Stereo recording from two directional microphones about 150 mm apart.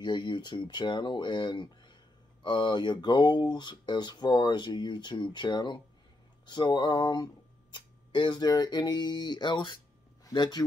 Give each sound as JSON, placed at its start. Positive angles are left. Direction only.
{"t": 0.0, "sound": "speech", "side_deg": 30}